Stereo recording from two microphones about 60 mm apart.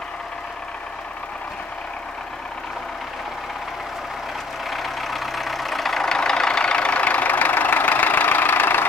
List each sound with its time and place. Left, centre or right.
4.6 s vehicle: centre; by 8.8 s left